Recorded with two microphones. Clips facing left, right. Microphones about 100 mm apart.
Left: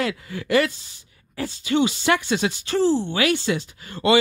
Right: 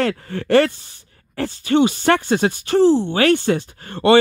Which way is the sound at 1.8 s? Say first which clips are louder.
Right 4 dB; 50° right (ahead or behind).